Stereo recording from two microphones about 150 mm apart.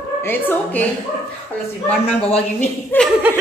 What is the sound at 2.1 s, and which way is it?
Speech, 40° left (ahead or behind).